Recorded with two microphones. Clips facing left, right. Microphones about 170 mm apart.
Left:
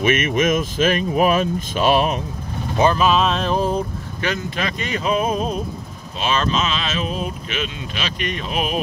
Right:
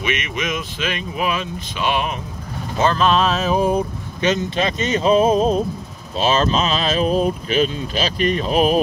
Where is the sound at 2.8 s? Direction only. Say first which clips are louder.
Even; 10° left (ahead or behind); by 8.8 s 35° right (ahead or behind).